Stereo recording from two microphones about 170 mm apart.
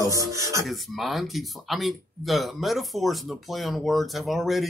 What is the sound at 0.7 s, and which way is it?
Speech, centre (ahead or behind).